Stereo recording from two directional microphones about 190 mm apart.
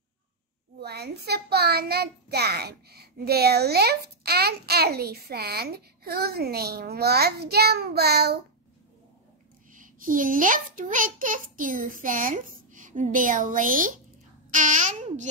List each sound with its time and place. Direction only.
0.7 s a child's voice: 60° right (ahead or behind)
9.7 s a child's voice: 45° right (ahead or behind)